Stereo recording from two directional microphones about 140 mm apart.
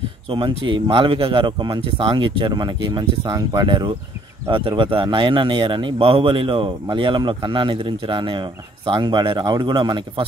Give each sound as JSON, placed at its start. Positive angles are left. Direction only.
{"t": 0.3, "sound": "speech", "side_deg": -35}